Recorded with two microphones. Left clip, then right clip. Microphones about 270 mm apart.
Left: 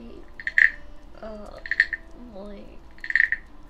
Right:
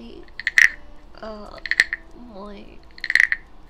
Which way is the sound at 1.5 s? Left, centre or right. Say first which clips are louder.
Right 3 dB; right.